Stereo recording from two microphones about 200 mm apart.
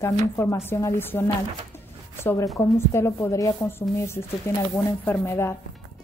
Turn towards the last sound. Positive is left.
turn(degrees=10)  # may be behind; listen again after turning